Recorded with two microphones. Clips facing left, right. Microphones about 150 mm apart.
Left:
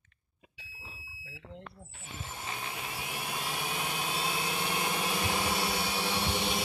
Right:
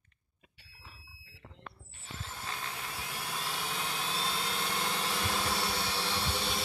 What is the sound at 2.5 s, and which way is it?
Jet engine, 15° left (ahead or behind).